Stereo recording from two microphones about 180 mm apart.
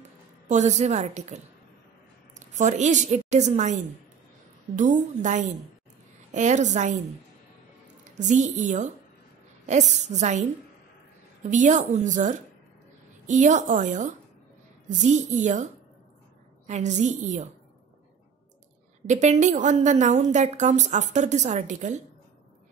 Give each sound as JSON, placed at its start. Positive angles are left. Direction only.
{"t": 0.5, "sound": "a woman's voice", "side_deg": -40}
{"t": 8.0, "sound": "a woman's voice", "side_deg": -40}
{"t": 11.4, "sound": "a woman's voice", "side_deg": -45}
{"t": 19.0, "sound": "a woman's voice", "side_deg": -40}